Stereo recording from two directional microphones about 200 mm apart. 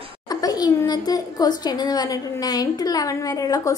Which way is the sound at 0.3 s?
20° left (ahead or behind).